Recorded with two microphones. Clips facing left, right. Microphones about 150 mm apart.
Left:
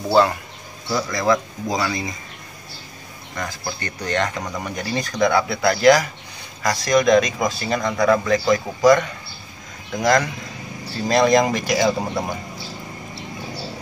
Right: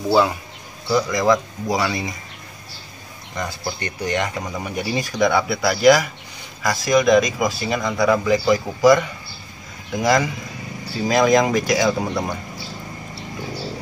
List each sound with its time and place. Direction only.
0.1 s speech: 5° right (ahead or behind)
1.1 s speech: 15° right (ahead or behind)
3.3 s a man's voice: 15° right (ahead or behind)
10.0 s a man's voice: 5° right (ahead or behind)